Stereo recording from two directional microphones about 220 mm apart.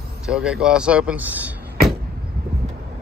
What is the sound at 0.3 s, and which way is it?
A man's voice, 5° right (ahead or behind).